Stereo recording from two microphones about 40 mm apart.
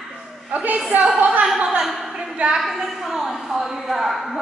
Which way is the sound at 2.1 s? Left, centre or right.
Right.